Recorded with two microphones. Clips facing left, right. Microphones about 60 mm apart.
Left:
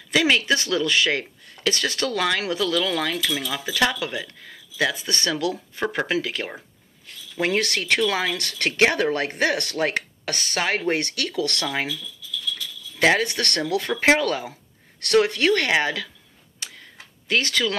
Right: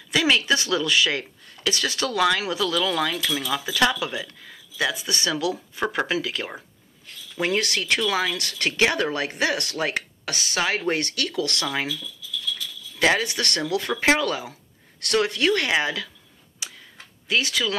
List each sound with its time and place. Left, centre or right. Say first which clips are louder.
0.1 s a sound: left 1 dB; left
0.7 s speech: left 1 dB; left
3.8 s speech: even; left
10.9 s speech: left 1 dB; left
13.0 s speech: left 2 dB; left
17.3 s speech: left 1 dB; left